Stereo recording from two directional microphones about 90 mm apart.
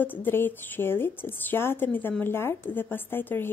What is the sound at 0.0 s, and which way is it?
A woman's voice, 20° left (ahead or behind).